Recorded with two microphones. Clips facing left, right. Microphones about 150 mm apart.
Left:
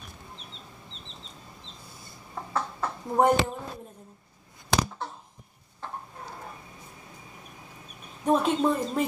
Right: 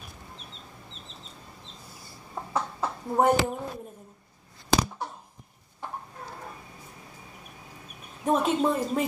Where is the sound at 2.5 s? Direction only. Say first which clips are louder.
Right 1 dB; 15° right (ahead or behind).